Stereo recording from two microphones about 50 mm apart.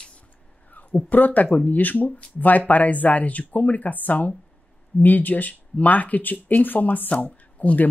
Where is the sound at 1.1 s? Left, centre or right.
Left.